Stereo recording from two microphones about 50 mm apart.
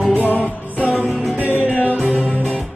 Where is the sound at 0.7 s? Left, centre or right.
Left.